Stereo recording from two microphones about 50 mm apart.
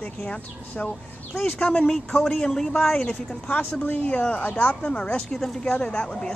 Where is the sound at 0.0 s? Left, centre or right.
Left.